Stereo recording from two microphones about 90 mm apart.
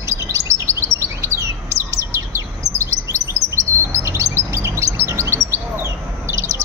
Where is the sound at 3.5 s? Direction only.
30° right (ahead or behind).